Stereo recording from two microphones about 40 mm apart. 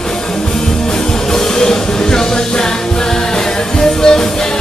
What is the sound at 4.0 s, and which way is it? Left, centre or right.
Music, centre.